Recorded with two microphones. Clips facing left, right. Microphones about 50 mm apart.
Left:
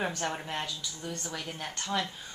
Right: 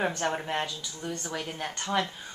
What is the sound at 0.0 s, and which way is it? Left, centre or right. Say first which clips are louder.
A woman's voice: right 4 dB; centre.